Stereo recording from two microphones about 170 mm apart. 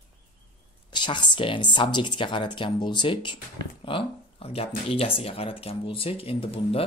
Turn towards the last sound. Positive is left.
turn(degrees=35)  # may be behind; listen again after turning